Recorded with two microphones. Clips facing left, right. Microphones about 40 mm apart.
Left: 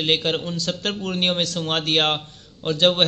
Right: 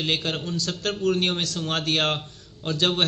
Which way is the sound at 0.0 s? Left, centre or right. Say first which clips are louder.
Left 5 dB; left.